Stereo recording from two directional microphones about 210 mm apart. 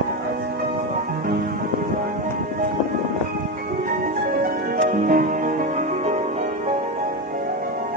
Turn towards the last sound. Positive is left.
turn(degrees=-35)  # may be behind; listen again after turning